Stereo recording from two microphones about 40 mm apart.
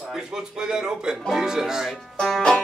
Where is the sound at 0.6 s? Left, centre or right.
Centre.